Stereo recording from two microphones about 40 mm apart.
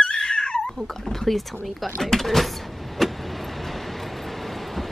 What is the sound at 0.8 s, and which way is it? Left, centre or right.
Speech, centre.